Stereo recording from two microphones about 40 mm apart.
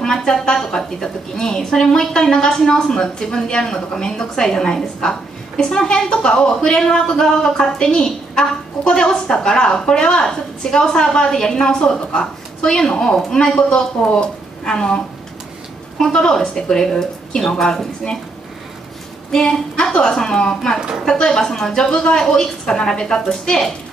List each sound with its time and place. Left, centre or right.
0.0 s a woman's voice: centre
16.0 s a woman's voice: centre
19.3 s a woman's voice: centre